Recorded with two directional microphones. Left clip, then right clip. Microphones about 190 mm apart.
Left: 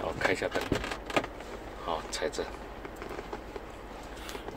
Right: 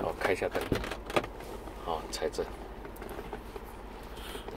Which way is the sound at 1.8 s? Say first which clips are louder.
Left 1 dB; 5° right (ahead or behind).